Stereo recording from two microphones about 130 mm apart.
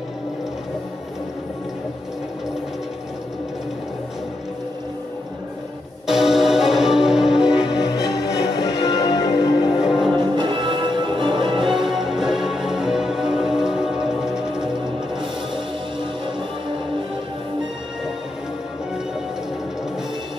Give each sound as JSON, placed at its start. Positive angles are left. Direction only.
{"t": 6.0, "sound": "music", "side_deg": -5}
{"t": 7.9, "sound": "music", "side_deg": 25}
{"t": 9.8, "sound": "music", "side_deg": -5}
{"t": 10.1, "sound": "music", "side_deg": -40}
{"t": 11.6, "sound": "music", "side_deg": 0}